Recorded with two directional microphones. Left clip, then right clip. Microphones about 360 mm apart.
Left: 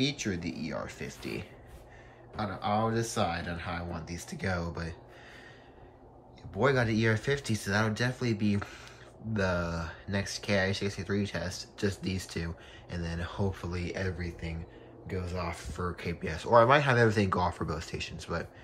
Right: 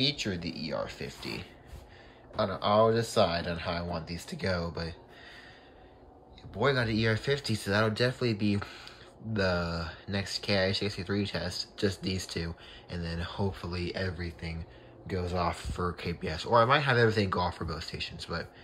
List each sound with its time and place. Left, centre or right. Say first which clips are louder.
0.0 s speech: right 2 dB; centre
6.5 s speech: left 1 dB; centre